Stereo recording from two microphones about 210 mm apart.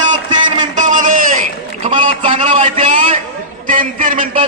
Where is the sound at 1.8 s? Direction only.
25° right (ahead or behind).